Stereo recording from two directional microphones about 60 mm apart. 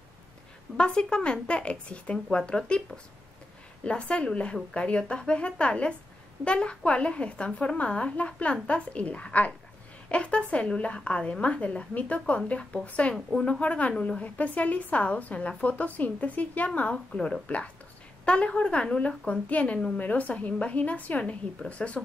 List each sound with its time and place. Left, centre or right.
0.7 s speech: centre
3.8 s a woman's voice: centre